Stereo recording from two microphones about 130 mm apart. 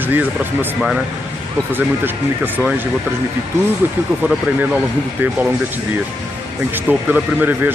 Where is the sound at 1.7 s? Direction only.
15° right (ahead or behind).